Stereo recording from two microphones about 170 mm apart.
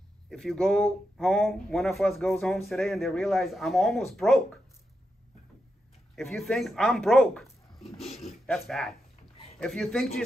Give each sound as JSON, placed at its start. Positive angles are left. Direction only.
{"t": 0.3, "sound": "speech", "side_deg": 5}
{"t": 6.3, "sound": "speech", "side_deg": 0}
{"t": 7.8, "sound": "a sound", "side_deg": 35}
{"t": 8.3, "sound": "speech", "side_deg": 0}